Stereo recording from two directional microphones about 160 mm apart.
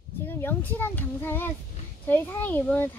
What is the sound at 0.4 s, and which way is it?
A child's voice, 15° left (ahead or behind).